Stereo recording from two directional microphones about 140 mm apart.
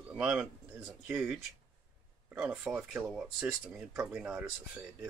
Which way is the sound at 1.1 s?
5° right (ahead or behind).